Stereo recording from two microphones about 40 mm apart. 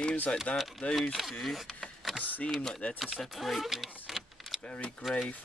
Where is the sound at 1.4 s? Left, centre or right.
Centre.